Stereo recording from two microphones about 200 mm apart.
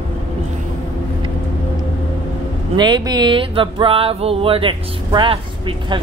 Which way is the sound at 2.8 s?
20° right (ahead or behind).